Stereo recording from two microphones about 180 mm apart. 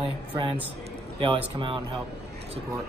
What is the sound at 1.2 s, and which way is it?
Speech, 30° right (ahead or behind).